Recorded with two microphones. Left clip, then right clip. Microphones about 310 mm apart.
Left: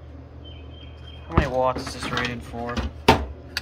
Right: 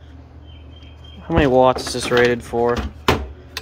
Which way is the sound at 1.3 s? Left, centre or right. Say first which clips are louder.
Right 8 dB; centre.